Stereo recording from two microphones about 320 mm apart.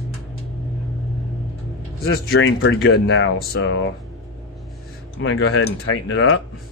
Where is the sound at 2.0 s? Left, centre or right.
Left.